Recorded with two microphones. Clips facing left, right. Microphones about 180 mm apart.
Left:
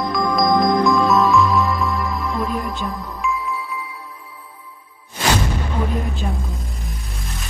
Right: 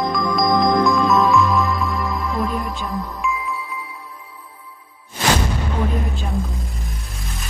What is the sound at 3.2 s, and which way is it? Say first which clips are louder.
Music: left 2 dB; centre (ahead or behind).